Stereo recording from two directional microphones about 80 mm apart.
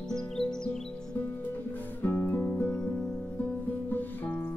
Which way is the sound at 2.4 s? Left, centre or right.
Centre.